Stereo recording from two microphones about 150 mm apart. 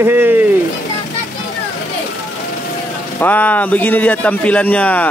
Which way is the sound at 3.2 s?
10° left (ahead or behind).